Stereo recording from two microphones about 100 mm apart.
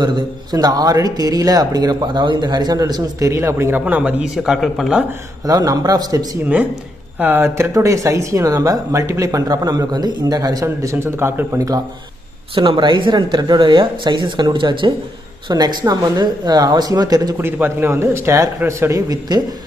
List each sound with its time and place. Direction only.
0.0 s speech: 45° right (ahead or behind); by 3.8 s 25° right (ahead or behind)
3.8 s speech: 15° right (ahead or behind)
5.5 s speech: 40° right (ahead or behind)
7.2 s speech: 20° right (ahead or behind)
12.5 s speech: 55° right (ahead or behind)
15.4 s speech: 45° right (ahead or behind)
17.4 s a man's voice: 20° right (ahead or behind); by 19.4 s 40° right (ahead or behind)